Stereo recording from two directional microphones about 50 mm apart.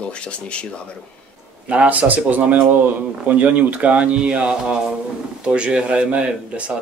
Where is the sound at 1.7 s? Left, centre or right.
Right.